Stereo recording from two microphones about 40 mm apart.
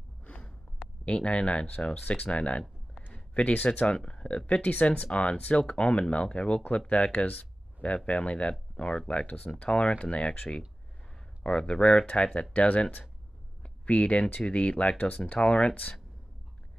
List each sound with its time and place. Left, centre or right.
1.0 s speech: left
2.0 s speech: left
3.1 s a sound: left
3.8 s speech: left
4.6 s speech: left
5.0 s speech: left
11.4 s speech: left